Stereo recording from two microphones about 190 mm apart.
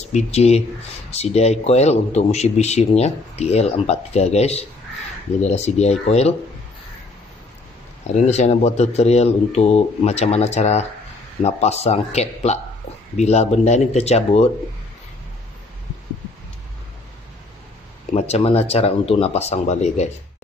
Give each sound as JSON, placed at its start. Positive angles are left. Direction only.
{"t": 0.1, "sound": "a man's voice", "side_deg": 35}
{"t": 8.1, "sound": "a man's voice", "side_deg": 35}
{"t": 18.1, "sound": "a man's voice", "side_deg": 35}